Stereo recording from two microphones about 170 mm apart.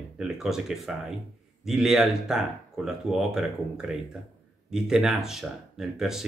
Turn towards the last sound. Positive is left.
turn(degrees=0)  # may be behind; listen again after turning